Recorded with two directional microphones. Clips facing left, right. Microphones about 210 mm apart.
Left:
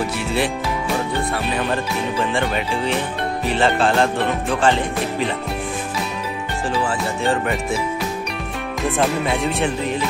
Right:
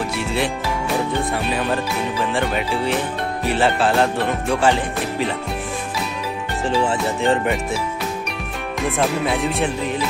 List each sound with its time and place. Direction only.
2.3 s music: 5° right (ahead or behind)
6.8 s music: 20° right (ahead or behind)
8.9 s music: centre (ahead or behind)